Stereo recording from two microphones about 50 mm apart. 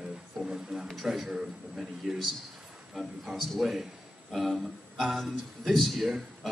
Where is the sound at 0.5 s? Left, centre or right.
Centre.